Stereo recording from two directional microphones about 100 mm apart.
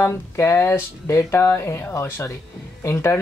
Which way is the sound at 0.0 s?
25° left (ahead or behind).